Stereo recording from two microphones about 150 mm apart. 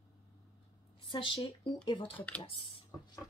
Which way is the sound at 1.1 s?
35° left (ahead or behind).